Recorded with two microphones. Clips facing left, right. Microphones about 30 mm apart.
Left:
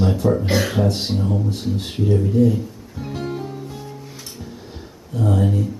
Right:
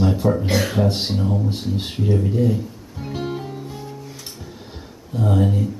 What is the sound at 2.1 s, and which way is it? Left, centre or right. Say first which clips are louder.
Music: left 3 dB; centre.